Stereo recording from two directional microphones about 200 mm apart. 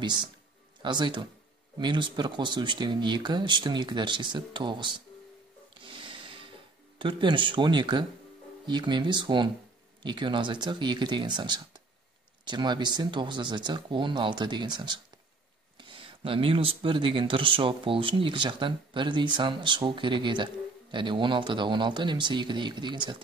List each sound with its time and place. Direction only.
0.0 s speech: 20° right (ahead or behind)
5.8 s snort: 25° right (ahead or behind)
7.0 s speech: 25° right (ahead or behind)